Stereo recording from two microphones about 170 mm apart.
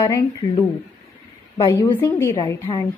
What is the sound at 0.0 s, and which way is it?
A woman's voice, 25° left (ahead or behind).